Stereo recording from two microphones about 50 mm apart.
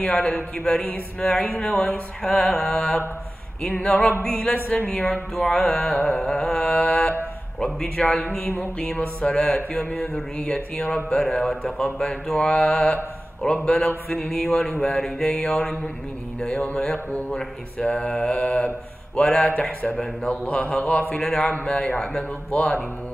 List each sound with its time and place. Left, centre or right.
0.1 s music: centre
3.6 s speech: left
4.9 s music: centre
8.4 s speech: left
9.2 s music: centre
12.4 s mantra: centre
13.7 s music: centre
20.2 s speech: left
21.2 s music: centre